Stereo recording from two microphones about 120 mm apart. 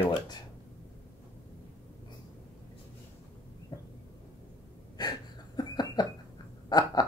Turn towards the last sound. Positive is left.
turn(degrees=35)  # may be behind; listen again after turning